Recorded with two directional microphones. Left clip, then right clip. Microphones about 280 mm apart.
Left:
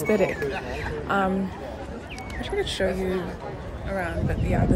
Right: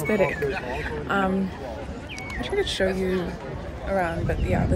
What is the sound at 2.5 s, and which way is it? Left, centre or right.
Speech, centre.